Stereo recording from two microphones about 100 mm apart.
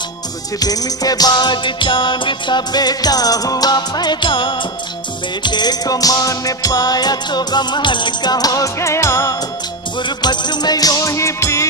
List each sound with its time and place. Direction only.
0.6 s music: 40° left (ahead or behind)
9.9 s music: 50° left (ahead or behind); by 11.6 s 30° left (ahead or behind)